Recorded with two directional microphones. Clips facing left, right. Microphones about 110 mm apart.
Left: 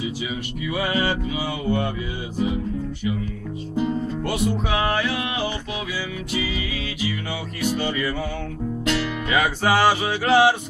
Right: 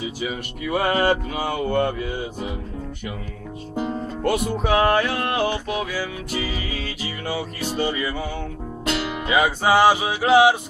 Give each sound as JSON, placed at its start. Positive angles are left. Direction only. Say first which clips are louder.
{"t": 0.2, "sound": "music", "louder": "right 1 dB", "side_deg": -50}
{"t": 3.7, "sound": "music", "louder": "left 3 dB", "side_deg": -50}
{"t": 9.0, "sound": "music", "louder": "right 2 dB", "side_deg": -20}